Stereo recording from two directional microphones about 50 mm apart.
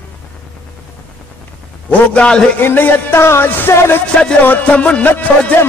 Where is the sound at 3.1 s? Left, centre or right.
Left.